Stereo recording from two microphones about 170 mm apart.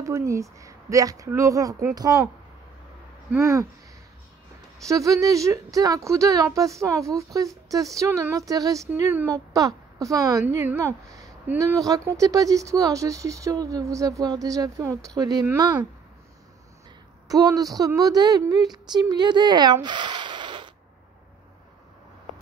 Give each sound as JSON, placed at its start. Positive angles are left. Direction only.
{"t": 0.0, "sound": "speech", "side_deg": -20}
{"t": 3.3, "sound": "speech", "side_deg": -15}
{"t": 4.8, "sound": "speech", "side_deg": -20}
{"t": 17.3, "sound": "speech", "side_deg": -20}